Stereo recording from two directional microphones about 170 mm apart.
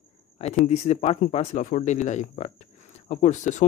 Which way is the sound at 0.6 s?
40° left (ahead or behind).